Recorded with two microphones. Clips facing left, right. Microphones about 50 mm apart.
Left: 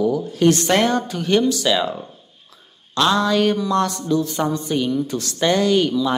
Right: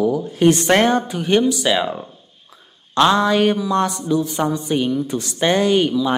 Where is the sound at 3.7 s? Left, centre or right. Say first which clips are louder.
Right 1 dB; centre.